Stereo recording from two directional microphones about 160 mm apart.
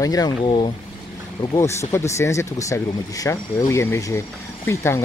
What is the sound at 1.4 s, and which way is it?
Speech, 20° left (ahead or behind).